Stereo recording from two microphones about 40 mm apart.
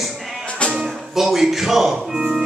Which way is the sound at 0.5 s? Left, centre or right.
Left.